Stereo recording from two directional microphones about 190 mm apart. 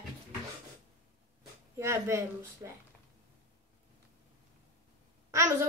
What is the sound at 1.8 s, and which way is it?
Speech, 15° right (ahead or behind).